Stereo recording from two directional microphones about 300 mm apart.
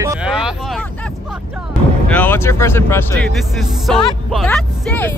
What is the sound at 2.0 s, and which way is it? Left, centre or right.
Speech, centre.